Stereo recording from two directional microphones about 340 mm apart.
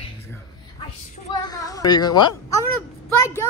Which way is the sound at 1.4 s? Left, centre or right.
Centre.